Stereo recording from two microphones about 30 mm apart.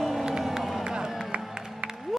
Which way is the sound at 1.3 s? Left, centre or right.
Right.